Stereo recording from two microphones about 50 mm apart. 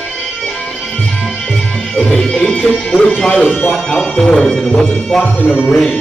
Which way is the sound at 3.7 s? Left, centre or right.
Centre.